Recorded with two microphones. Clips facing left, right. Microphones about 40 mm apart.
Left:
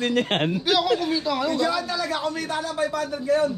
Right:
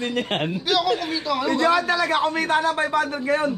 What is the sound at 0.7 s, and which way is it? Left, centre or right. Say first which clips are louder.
Speech: even; centre.